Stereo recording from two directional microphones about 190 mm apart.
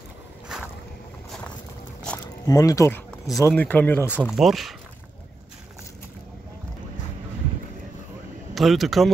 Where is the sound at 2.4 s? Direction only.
20° left (ahead or behind).